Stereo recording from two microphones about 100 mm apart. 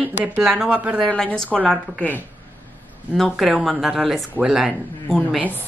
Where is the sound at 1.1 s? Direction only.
10° left (ahead or behind).